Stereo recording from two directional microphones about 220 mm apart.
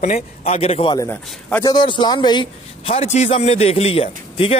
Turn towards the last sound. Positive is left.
turn(degrees=25)  # may be behind; listen again after turning